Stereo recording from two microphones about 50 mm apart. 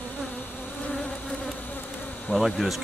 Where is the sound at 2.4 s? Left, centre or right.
Centre.